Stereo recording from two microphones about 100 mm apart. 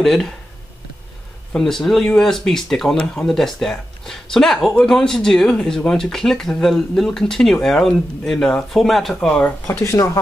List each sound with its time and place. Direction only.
0.0 s speech: 5° left (ahead or behind)
1.5 s speech: 5° left (ahead or behind)
9.7 s speech: 30° left (ahead or behind)